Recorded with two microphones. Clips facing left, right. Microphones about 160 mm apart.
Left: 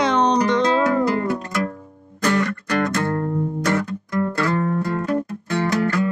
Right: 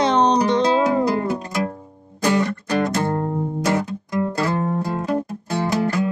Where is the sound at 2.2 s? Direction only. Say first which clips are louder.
Right 1 dB; 20° right (ahead or behind).